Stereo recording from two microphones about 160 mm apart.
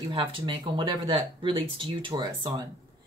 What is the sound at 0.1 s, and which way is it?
Speech, 30° right (ahead or behind).